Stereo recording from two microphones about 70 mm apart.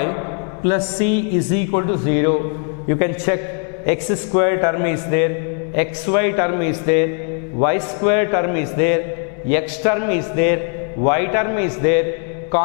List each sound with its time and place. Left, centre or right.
0.7 s a man's voice: centre